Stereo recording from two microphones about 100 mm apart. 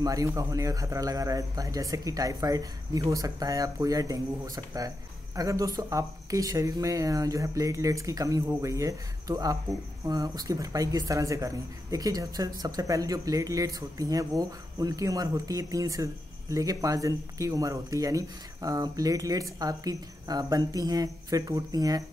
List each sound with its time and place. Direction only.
0.0 s speech: 35° right (ahead or behind)